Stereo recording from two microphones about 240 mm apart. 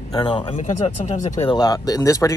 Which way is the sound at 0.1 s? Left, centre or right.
Left.